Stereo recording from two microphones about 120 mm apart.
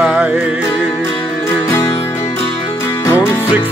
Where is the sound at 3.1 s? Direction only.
20° left (ahead or behind).